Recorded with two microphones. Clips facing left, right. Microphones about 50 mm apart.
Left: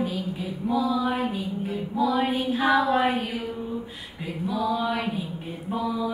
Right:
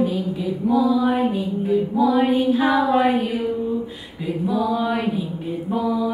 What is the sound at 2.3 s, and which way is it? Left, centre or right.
Speech, centre.